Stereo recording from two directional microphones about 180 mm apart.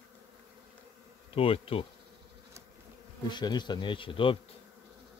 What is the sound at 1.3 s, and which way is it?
Bee, 30° left (ahead or behind).